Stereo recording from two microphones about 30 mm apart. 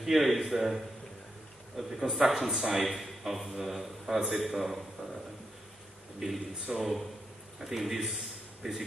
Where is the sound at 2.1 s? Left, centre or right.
Centre.